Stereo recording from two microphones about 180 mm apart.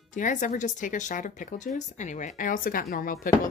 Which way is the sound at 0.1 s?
45° left (ahead or behind).